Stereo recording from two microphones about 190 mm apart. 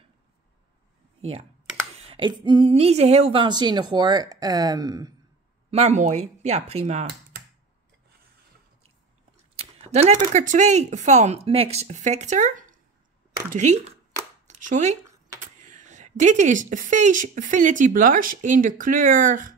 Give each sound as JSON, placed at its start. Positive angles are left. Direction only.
{"t": 2.0, "sound": "speech", "side_deg": -30}
{"t": 5.7, "sound": "speech", "side_deg": -35}
{"t": 9.6, "sound": "speech", "side_deg": -30}
{"t": 14.5, "sound": "a sound", "side_deg": -40}
{"t": 15.6, "sound": "speech", "side_deg": -40}